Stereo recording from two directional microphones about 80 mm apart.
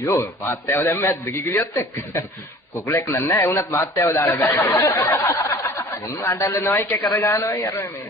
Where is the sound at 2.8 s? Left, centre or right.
Left.